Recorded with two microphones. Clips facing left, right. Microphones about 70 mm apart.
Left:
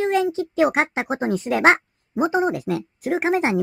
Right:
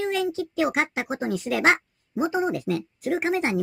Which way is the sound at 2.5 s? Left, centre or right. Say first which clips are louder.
Left 2 dB; left.